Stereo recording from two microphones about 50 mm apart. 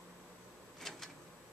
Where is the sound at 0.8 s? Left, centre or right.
Centre.